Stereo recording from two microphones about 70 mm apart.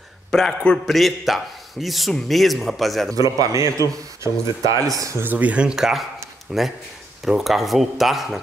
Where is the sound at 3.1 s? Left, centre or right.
Right.